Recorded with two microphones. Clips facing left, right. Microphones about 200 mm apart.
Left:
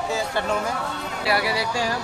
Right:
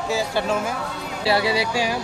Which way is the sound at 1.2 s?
25° right (ahead or behind).